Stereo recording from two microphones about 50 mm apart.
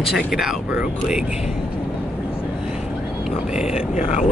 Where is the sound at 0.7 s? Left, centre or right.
Centre.